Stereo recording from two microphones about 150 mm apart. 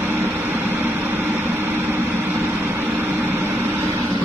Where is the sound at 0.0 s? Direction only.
15° right (ahead or behind).